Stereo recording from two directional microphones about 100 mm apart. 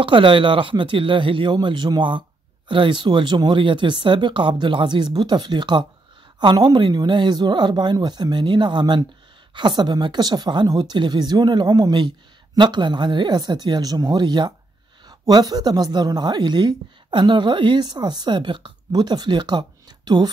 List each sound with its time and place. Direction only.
0.0 s a woman's voice: 60° right (ahead or behind)